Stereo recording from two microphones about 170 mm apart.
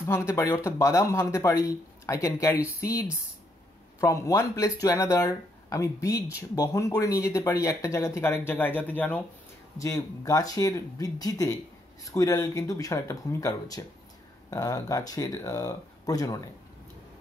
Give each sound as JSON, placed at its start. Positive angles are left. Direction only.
{"t": 0.0, "sound": "speech", "side_deg": 15}